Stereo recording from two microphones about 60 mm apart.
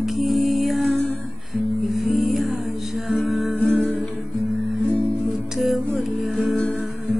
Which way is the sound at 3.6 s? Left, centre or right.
Centre.